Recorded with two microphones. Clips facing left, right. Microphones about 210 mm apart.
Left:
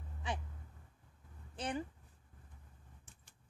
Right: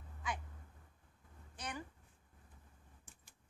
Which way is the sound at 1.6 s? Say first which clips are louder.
Left 7 dB; 30° left (ahead or behind).